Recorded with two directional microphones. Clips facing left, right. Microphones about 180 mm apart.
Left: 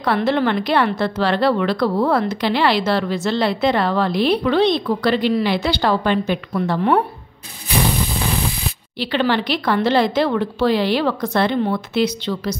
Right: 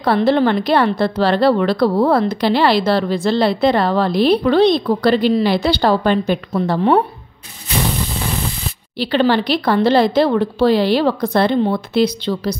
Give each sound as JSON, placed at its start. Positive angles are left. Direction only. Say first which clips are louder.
{"t": 0.0, "sound": "a woman's voice", "louder": "right 4 dB", "side_deg": -35}
{"t": 8.9, "sound": "a woman's voice", "louder": "right 4 dB", "side_deg": -35}